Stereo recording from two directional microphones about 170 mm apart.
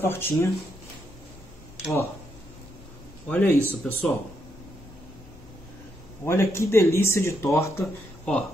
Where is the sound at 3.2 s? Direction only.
15° left (ahead or behind).